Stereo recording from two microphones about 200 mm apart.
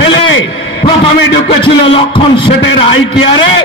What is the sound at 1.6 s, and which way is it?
A man's voice, 25° left (ahead or behind).